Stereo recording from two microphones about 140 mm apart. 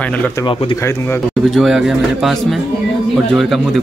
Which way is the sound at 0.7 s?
20° left (ahead or behind).